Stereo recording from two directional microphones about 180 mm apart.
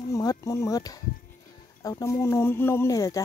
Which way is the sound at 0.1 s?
20° left (ahead or behind).